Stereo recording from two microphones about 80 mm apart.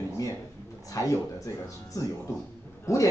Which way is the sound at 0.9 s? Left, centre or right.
Left.